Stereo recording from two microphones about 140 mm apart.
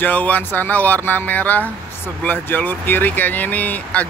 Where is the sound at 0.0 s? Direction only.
10° left (ahead or behind).